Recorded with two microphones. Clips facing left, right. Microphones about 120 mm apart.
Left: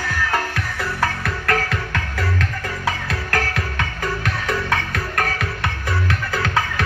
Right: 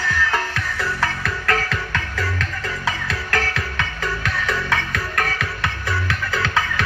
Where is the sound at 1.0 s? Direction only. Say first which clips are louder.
Left 1 dB; 60° left (ahead or behind).